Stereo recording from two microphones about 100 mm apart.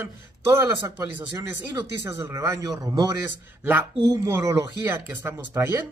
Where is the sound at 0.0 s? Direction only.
25° right (ahead or behind).